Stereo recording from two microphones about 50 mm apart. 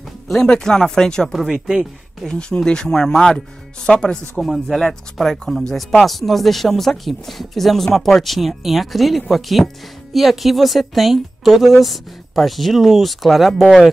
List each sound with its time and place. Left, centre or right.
0.5 s speech: centre
1.5 s speech: centre
2.2 s speech: centre
4.4 s speech: centre